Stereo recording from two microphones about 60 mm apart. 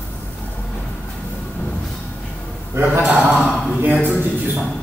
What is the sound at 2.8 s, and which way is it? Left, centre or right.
Speech, right.